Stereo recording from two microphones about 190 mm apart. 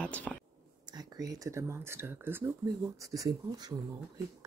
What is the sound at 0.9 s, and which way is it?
Speech, 20° right (ahead or behind).